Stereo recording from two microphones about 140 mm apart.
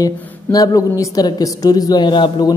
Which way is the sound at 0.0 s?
25° left (ahead or behind).